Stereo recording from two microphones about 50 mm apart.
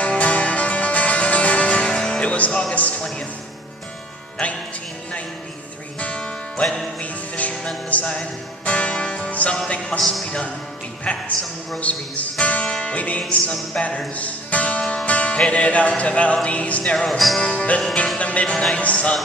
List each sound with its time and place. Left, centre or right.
0.0 s music: left
2.2 s music: left
5.9 s music: left
6.6 s music: centre
7.0 s music: left
9.8 s speech: centre
11.1 s music: centre
11.8 s music: left
12.6 s music: centre
12.9 s music: left
14.8 s music: centre
15.0 s music: left
16.9 s music: centre